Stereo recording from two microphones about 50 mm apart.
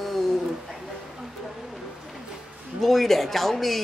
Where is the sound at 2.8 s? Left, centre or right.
Centre.